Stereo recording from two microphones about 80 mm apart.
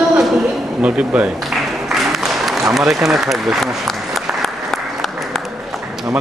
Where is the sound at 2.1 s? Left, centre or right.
Centre.